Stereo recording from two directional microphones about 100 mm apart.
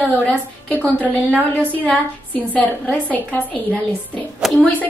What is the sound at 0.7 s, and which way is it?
A woman's voice, 15° left (ahead or behind).